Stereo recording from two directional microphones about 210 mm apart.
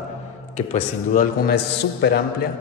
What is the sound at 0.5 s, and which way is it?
A man's voice, 35° left (ahead or behind).